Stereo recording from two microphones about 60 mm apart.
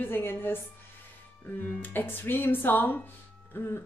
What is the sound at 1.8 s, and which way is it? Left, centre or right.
Speech, left.